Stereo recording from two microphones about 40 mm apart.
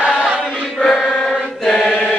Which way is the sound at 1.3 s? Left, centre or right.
Centre.